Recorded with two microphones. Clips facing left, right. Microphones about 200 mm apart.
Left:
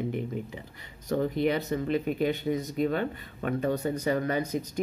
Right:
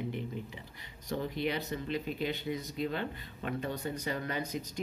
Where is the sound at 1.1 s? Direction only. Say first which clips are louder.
Left 7 dB; 50° left (ahead or behind).